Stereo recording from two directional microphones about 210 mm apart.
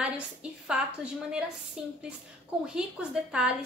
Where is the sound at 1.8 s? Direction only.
5° right (ahead or behind).